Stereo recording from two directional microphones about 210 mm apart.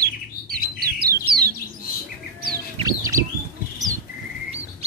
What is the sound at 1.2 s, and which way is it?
Bird, 45° right (ahead or behind).